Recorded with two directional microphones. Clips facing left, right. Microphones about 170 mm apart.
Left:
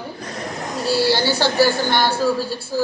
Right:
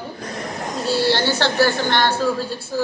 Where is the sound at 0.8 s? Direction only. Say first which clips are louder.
Left 1 dB; 10° left (ahead or behind).